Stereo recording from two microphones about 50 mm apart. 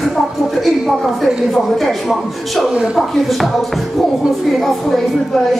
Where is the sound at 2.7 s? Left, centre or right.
Centre.